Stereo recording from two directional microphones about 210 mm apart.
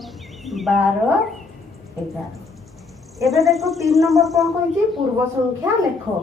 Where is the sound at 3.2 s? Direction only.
Centre (ahead or behind).